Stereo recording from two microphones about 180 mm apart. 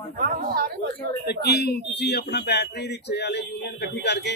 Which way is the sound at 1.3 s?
65° left (ahead or behind).